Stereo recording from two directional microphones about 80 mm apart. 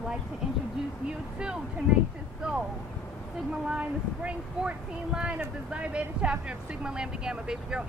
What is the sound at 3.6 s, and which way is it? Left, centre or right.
Speech, centre.